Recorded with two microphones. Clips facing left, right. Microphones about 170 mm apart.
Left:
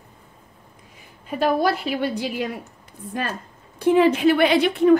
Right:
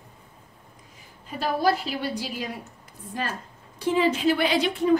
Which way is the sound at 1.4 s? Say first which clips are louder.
Left 3 dB; 60° left (ahead or behind).